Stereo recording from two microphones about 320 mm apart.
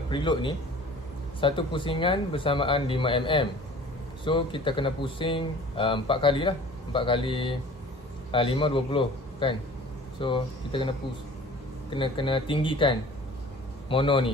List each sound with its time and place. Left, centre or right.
0.1 s speech: centre